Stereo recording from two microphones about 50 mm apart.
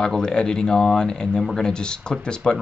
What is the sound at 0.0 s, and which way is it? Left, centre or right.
Speech, centre.